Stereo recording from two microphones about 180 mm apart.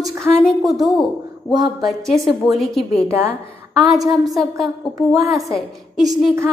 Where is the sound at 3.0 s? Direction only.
10° right (ahead or behind).